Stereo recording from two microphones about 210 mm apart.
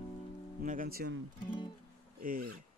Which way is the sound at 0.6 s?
40° right (ahead or behind).